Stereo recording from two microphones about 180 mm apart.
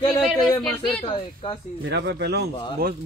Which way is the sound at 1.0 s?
30° left (ahead or behind).